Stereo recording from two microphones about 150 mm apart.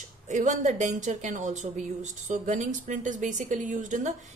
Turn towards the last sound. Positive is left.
turn(degrees=-55)  # may be behind; listen again after turning